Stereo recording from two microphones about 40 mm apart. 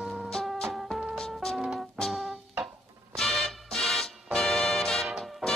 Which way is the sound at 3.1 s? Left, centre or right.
Centre.